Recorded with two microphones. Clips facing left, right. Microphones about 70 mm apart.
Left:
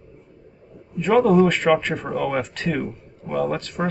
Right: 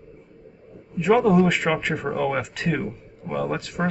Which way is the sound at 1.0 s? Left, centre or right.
Centre.